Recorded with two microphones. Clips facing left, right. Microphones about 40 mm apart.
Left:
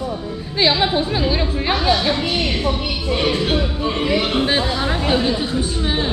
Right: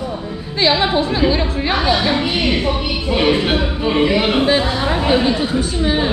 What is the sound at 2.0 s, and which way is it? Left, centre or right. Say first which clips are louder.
Speech: right 2 dB; centre.